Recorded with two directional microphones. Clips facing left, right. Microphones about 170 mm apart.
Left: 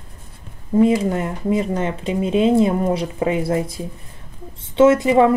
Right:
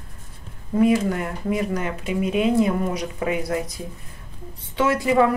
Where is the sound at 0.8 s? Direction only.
25° left (ahead or behind).